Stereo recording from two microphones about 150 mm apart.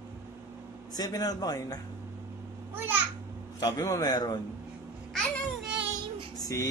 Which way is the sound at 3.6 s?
25° left (ahead or behind).